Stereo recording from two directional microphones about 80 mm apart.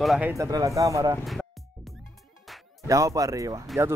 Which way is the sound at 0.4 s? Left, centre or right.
Right.